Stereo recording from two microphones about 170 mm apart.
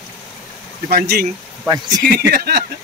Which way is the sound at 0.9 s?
60° right (ahead or behind).